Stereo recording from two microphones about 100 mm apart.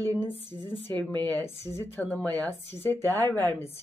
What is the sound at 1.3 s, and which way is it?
Speech, 25° left (ahead or behind).